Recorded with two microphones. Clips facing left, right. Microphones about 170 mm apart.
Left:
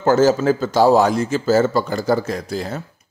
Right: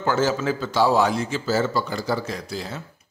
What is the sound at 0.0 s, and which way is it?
Speech, 40° left (ahead or behind).